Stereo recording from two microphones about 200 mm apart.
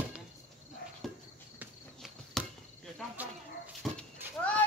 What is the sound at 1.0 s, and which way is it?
Cricket, centre (ahead or behind).